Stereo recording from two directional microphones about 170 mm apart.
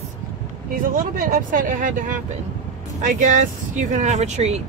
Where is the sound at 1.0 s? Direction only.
55° right (ahead or behind).